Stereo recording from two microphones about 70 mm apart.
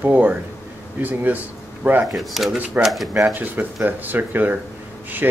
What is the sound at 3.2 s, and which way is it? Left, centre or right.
Speech, right.